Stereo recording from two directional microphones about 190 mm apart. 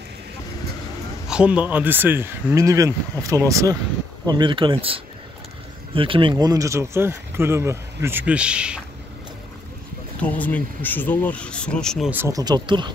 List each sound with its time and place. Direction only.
1.2 s speech: 5° right (ahead or behind)
10.2 s speech: 10° left (ahead or behind)
12.1 s speech: 15° right (ahead or behind)